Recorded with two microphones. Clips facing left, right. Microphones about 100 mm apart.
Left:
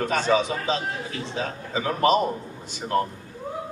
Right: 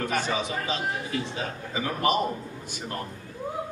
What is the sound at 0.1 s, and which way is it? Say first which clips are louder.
A man's voice: left 6 dB; 75° left (ahead or behind).